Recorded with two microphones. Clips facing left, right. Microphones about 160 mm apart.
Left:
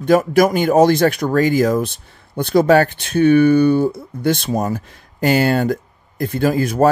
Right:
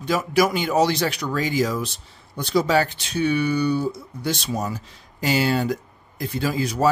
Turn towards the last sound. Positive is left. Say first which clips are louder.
# left 6 dB
turn(degrees=50)  # may be behind; listen again after turning